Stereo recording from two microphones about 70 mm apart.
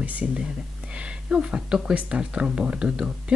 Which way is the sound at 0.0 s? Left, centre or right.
Centre.